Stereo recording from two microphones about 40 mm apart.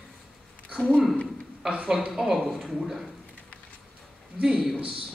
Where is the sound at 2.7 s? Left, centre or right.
Centre.